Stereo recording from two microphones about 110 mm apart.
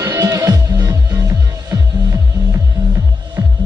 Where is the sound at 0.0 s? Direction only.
30° right (ahead or behind).